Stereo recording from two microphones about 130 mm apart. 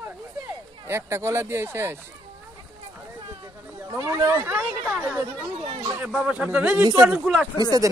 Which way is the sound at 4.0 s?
20° right (ahead or behind).